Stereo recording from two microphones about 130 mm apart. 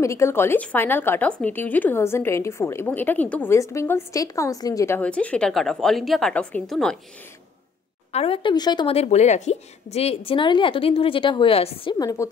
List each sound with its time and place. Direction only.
0.0 s a woman's voice: 20° left (ahead or behind)
3.5 s a woman's voice: 20° left (ahead or behind)
5.0 s a woman's voice: 10° left (ahead or behind)
8.1 s a woman's voice: 50° left (ahead or behind)
8.8 s a woman's voice: 55° left (ahead or behind)
12.0 s a woman's voice: 25° left (ahead or behind)